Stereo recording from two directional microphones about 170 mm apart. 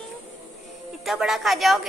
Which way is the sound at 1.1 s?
Centre (ahead or behind).